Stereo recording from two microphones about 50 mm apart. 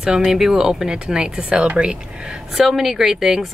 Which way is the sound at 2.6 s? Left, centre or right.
Centre.